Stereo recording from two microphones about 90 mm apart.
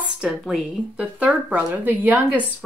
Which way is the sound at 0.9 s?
15° right (ahead or behind).